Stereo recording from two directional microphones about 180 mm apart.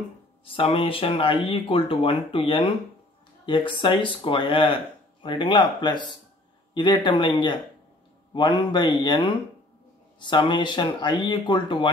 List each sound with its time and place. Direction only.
0.5 s speech: 30° left (ahead or behind)